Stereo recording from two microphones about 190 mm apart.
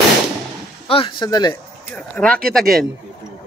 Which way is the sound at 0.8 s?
30° left (ahead or behind).